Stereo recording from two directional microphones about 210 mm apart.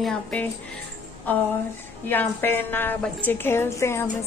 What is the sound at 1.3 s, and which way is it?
A woman's voice, 10° left (ahead or behind).